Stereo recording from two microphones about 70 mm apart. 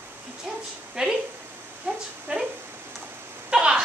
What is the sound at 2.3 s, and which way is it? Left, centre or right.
Speech, centre.